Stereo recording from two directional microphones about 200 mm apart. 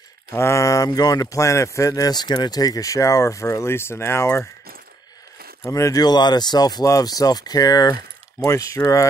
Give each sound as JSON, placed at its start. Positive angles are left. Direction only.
{"t": 0.3, "sound": "speech", "side_deg": 15}
{"t": 5.7, "sound": "speech", "side_deg": 15}